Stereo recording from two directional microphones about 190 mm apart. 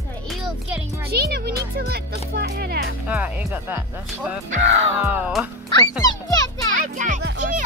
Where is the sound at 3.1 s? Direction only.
5° right (ahead or behind).